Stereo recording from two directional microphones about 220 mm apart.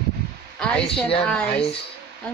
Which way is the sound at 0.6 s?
5° left (ahead or behind).